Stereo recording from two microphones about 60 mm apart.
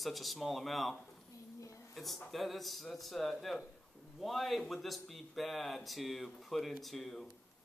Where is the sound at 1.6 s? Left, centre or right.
Left.